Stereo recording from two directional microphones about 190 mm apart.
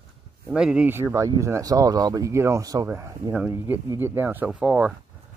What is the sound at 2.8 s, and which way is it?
Speech, 10° right (ahead or behind).